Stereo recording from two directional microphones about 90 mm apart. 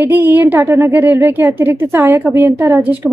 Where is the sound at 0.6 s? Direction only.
30° right (ahead or behind).